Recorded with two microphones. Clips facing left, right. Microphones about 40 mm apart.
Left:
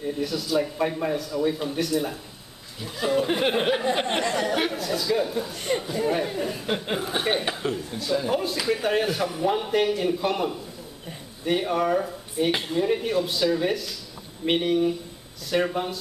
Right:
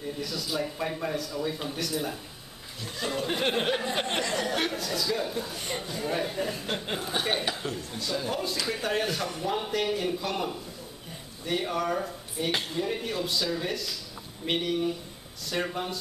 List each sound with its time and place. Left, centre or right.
0.0 s speech: centre
9.8 s a man's voice: centre
11.7 s speech: centre